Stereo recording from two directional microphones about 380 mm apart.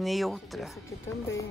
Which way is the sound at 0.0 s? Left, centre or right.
Centre.